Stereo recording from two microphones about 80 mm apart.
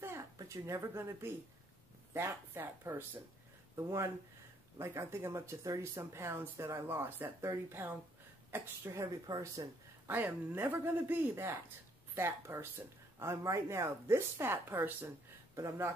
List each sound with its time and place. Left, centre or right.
0.0 s a sound: right
0.4 s a woman's voice: right
9.3 s speech: right
10.0 s speech: right
15.5 s speech: right